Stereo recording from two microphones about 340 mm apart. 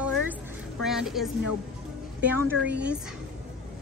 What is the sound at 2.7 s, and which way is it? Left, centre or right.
Speech, centre.